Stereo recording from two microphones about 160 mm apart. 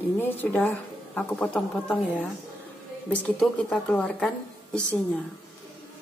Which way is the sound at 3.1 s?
5° left (ahead or behind).